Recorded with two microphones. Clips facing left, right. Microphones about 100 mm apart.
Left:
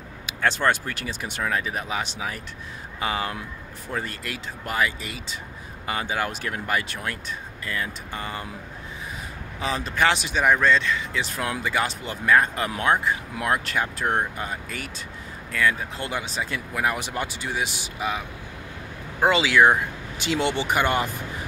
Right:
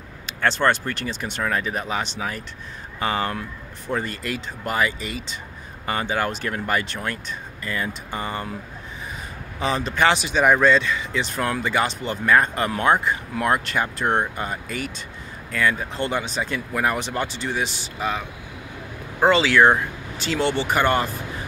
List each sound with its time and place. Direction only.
0.3 s speech: 10° left (ahead or behind)
9.6 s speech: centre (ahead or behind)
19.2 s speech: 10° left (ahead or behind)